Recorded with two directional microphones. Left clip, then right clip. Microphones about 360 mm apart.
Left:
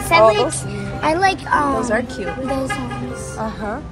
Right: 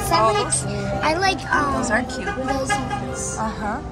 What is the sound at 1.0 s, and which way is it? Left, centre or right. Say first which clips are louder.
Speech: left 4 dB; centre.